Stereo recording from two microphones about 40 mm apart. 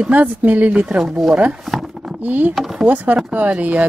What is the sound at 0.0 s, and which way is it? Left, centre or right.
Speech, right.